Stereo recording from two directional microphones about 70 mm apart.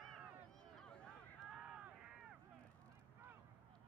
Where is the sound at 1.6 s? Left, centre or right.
Centre.